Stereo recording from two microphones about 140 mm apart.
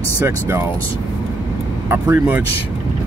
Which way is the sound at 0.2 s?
20° right (ahead or behind).